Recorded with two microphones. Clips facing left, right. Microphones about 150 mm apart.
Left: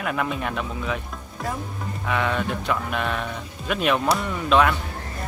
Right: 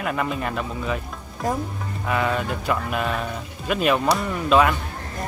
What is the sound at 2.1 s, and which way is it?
Speech, 5° right (ahead or behind).